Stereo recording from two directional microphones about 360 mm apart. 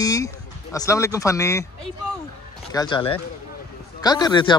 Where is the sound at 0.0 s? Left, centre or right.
Centre.